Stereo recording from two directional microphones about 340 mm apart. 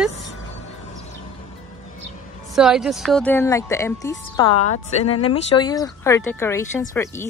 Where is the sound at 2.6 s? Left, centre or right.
Centre.